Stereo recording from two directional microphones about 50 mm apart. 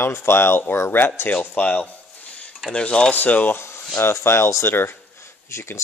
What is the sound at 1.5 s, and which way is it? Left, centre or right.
Speech, left.